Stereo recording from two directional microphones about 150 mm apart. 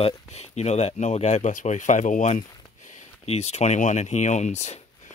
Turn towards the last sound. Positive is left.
turn(degrees=50)  # may be behind; listen again after turning